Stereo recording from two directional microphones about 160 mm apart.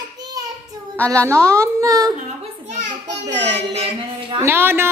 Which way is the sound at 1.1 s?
20° right (ahead or behind).